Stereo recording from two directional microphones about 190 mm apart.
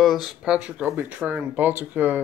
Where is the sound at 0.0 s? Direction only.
Centre (ahead or behind).